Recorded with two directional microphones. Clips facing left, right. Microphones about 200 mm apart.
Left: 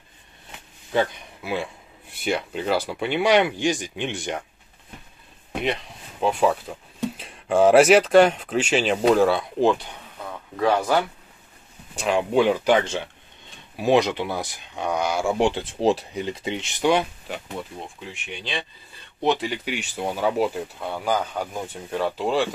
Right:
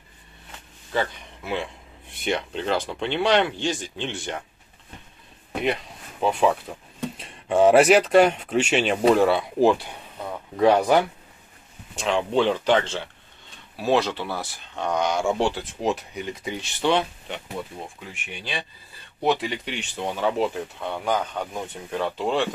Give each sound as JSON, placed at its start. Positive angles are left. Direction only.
{"t": 0.9, "sound": "speech", "side_deg": 5}
{"t": 5.5, "sound": "speech", "side_deg": 0}
{"t": 12.0, "sound": "speech", "side_deg": 10}
{"t": 15.4, "sound": "speech", "side_deg": 25}
{"t": 18.4, "sound": "speech", "side_deg": -10}